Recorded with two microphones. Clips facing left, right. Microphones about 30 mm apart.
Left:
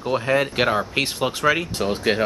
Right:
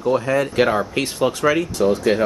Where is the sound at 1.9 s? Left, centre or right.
Left.